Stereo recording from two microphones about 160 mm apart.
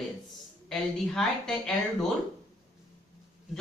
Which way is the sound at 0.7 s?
5° left (ahead or behind).